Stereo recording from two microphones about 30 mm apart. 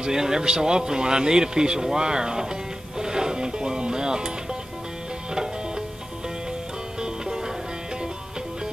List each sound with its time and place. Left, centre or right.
0.0 s speech: centre
3.0 s music: right
7.0 s music: right